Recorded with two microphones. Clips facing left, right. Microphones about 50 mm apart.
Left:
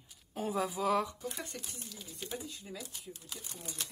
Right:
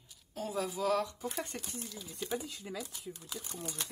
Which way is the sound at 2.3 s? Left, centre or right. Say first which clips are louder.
Right 5 dB; right.